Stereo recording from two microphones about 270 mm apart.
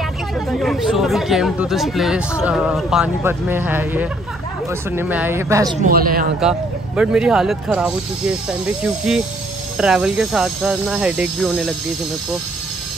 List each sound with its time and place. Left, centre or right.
0.5 s speech: centre
5.8 s speech: right
7.0 s speech: centre